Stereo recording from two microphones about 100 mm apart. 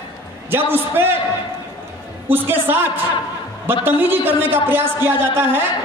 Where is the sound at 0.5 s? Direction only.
20° right (ahead or behind).